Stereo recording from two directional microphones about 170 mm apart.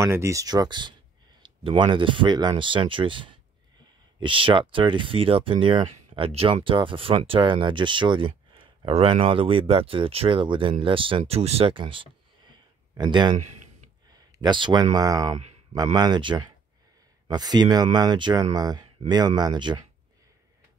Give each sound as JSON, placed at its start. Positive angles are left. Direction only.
{"t": 0.0, "sound": "speech", "side_deg": -15}
{"t": 13.4, "sound": "a sound", "side_deg": -45}
{"t": 14.1, "sound": "speech", "side_deg": -25}